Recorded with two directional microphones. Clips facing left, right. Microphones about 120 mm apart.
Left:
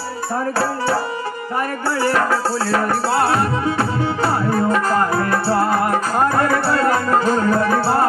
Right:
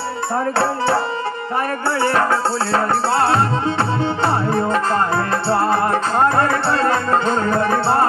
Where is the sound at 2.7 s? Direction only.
25° right (ahead or behind).